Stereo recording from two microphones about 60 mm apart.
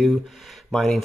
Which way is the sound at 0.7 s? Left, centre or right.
Centre.